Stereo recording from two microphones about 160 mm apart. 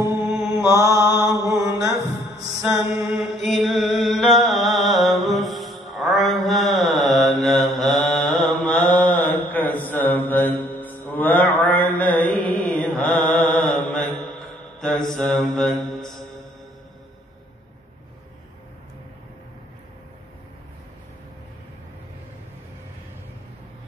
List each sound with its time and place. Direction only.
0.6 s mantra: 15° right (ahead or behind)
2.6 s mantra: 5° right (ahead or behind)